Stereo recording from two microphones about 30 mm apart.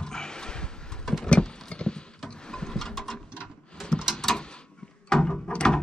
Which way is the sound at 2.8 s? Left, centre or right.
Centre.